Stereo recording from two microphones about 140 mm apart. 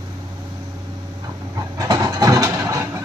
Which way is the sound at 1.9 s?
25° right (ahead or behind).